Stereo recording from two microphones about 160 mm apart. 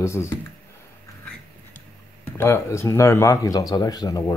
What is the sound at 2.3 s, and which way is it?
Speech, 15° left (ahead or behind).